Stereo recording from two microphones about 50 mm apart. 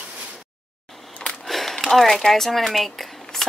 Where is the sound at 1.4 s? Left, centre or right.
Centre.